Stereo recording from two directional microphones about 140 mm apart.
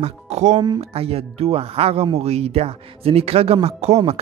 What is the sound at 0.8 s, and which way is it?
Speech, 45° right (ahead or behind).